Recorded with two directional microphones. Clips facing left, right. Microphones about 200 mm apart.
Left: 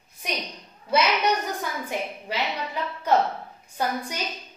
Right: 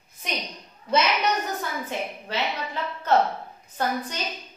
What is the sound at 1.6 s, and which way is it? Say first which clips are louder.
A woman's voice: even; 10° left (ahead or behind).